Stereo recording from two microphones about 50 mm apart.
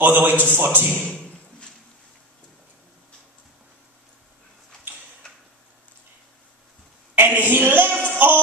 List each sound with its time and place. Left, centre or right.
0.0 s a man's voice: right
7.2 s a sound: right
8.0 s music: right